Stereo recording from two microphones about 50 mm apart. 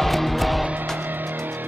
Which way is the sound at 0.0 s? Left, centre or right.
Centre.